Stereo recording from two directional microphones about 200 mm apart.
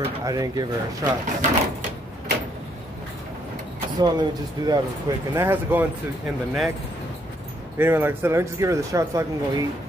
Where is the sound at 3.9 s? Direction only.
20° right (ahead or behind).